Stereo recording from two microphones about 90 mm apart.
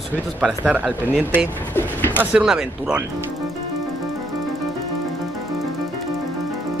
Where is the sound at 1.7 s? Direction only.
20° left (ahead or behind).